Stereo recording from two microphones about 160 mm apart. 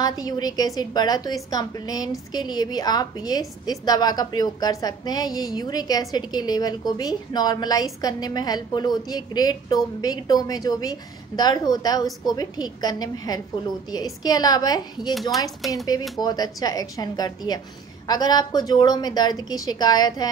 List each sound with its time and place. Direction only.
0.0 s a woman's voice: 25° left (ahead or behind)